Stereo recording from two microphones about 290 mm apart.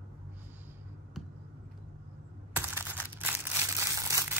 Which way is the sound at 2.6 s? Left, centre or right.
Centre.